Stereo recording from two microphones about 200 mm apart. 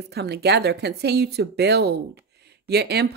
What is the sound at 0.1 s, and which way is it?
A woman's voice, 55° right (ahead or behind).